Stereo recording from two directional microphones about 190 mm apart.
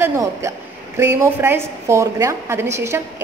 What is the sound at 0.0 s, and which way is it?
A woman's voice, 15° right (ahead or behind).